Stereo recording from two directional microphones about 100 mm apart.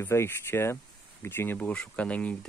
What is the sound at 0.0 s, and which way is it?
Speech, 25° left (ahead or behind).